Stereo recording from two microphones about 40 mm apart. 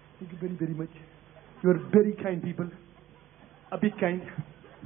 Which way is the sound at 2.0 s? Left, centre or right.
Centre.